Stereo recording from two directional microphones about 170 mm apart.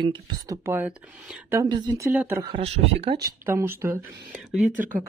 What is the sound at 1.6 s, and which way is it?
Speech, 25° right (ahead or behind).